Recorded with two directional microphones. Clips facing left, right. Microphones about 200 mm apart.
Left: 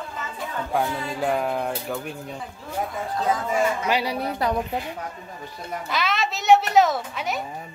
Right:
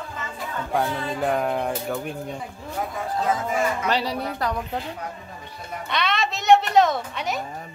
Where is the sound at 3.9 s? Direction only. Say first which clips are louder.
Left 1 dB; 10° left (ahead or behind).